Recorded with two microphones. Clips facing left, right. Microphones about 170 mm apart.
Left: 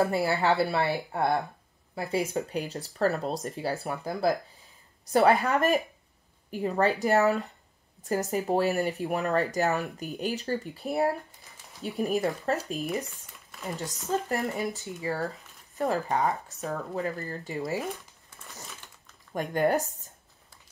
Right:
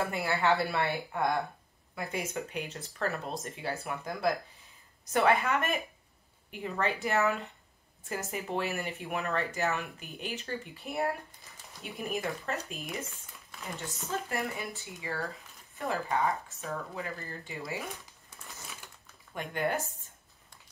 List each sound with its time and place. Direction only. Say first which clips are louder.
0.0 s speech: left 5 dB; 35° left (ahead or behind)
14.3 s speech: left 6 dB; 40° left (ahead or behind)
19.3 s speech: left 7 dB; 40° left (ahead or behind)